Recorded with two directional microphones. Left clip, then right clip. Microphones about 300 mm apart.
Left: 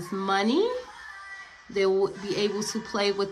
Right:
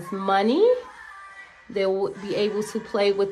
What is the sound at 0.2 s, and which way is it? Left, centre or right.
A woman's voice, centre.